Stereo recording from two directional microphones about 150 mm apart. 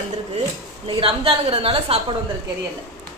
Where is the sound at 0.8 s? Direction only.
35° right (ahead or behind).